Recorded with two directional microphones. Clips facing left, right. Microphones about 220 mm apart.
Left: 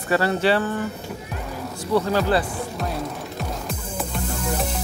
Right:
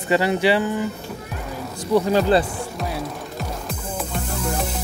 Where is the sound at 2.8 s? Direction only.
Centre (ahead or behind).